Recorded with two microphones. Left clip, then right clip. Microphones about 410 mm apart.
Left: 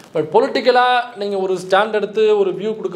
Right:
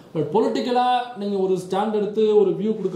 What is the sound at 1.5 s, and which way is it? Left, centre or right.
A man's voice, left.